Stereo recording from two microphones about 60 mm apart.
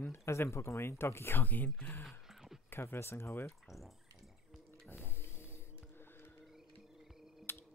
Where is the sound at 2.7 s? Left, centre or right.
Left.